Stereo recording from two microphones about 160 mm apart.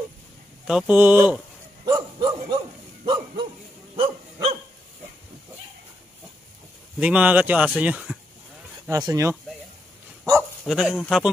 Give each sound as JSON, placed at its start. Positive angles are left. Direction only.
{"t": 0.7, "sound": "speech", "side_deg": -5}
{"t": 1.9, "sound": "bow-wow", "side_deg": -25}
{"t": 3.9, "sound": "dog", "side_deg": -35}
{"t": 7.0, "sound": "speech", "side_deg": -10}
{"t": 8.8, "sound": "speech", "side_deg": -20}
{"t": 10.6, "sound": "a man's voice", "side_deg": 0}